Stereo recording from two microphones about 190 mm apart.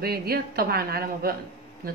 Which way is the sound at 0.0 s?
55° right (ahead or behind).